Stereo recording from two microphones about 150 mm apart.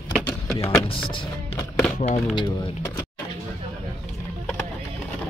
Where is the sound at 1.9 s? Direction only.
50° left (ahead or behind).